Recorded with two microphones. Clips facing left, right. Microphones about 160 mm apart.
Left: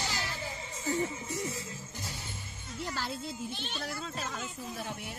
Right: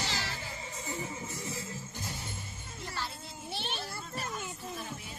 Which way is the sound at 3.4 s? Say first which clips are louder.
Even; 75° right (ahead or behind).